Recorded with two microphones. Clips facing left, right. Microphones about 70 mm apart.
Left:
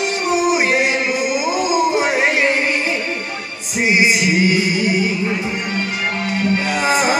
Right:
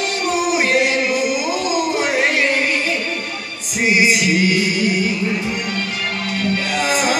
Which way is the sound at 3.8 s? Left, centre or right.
Left.